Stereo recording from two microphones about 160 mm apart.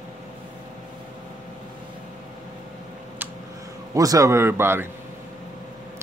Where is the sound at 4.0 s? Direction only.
20° right (ahead or behind).